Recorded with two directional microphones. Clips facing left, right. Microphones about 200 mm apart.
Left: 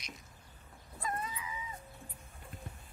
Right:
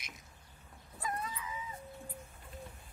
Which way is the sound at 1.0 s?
Centre (ahead or behind).